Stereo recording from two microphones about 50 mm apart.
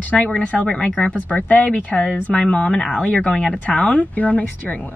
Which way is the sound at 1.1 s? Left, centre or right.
Left.